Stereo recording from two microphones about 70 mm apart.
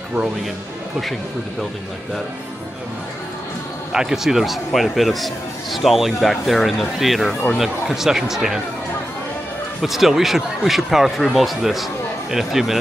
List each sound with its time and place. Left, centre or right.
3.9 s speech: centre
9.8 s speech: centre